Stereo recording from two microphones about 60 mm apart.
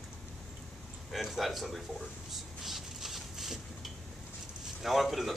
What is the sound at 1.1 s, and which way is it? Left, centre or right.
Speech, centre.